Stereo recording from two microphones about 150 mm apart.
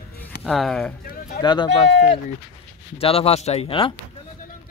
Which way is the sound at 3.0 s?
40° left (ahead or behind).